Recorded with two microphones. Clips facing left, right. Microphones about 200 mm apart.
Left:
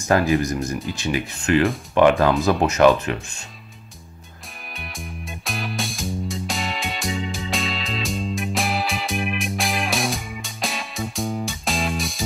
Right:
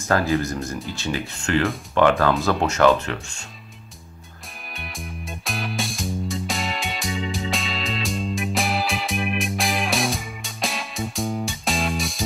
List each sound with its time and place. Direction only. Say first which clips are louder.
0.1 s speech: left 2 dB; 15° left (ahead or behind)
4.7 s music: even; centre (ahead or behind)